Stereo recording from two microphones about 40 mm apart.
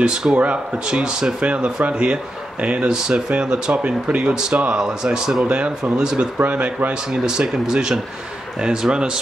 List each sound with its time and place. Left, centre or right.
0.0 s speech: centre
3.7 s speech: right; by 5.4 s centre
5.4 s speech: right
5.9 s speech: centre
6.5 s speech: right
6.9 s speech: centre